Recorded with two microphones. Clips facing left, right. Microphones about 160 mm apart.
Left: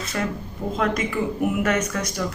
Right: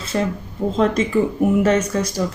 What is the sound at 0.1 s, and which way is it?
Speech, 25° right (ahead or behind).